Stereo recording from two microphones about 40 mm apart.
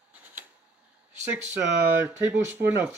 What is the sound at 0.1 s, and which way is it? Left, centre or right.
Camera, right.